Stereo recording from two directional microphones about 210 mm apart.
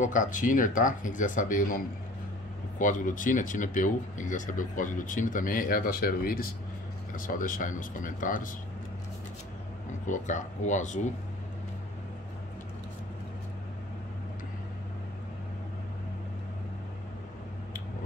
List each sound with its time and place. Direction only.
0.0 s speech: 35° left (ahead or behind)
2.8 s speech: 40° left (ahead or behind)
10.0 s speech: 35° left (ahead or behind)